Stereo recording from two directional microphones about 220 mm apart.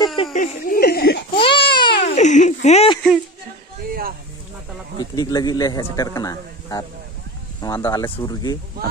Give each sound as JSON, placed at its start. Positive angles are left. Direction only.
{"t": 0.0, "sound": "a sound", "side_deg": 25}
{"t": 0.3, "sound": "speech", "side_deg": 40}
{"t": 1.3, "sound": "speech", "side_deg": 25}
{"t": 5.1, "sound": "a man's voice", "side_deg": 15}